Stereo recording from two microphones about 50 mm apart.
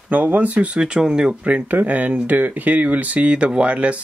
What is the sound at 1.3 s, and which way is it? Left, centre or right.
Speech, right.